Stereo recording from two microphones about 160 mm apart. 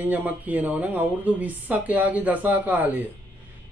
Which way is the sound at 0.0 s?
10° right (ahead or behind).